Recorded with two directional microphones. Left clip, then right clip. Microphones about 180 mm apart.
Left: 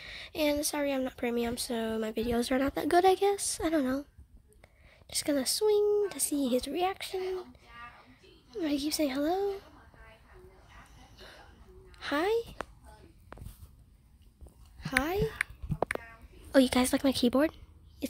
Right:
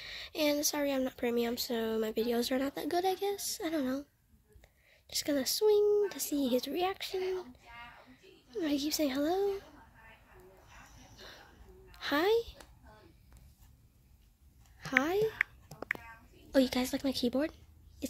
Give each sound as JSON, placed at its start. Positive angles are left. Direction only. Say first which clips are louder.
{"t": 0.0, "sound": "speech", "louder": "left 2 dB", "side_deg": 15}
{"t": 11.2, "sound": "a sound", "louder": "even", "side_deg": 5}
{"t": 11.9, "sound": "a woman's voice", "louder": "even", "side_deg": 10}
{"t": 14.8, "sound": "speech", "louder": "even", "side_deg": 0}
{"t": 16.5, "sound": "a woman's voice", "louder": "left 5 dB", "side_deg": 30}